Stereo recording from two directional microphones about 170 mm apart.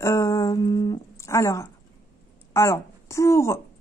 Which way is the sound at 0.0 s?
15° left (ahead or behind).